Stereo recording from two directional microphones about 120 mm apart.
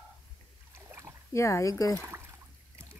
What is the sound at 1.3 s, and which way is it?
Speech, 25° left (ahead or behind).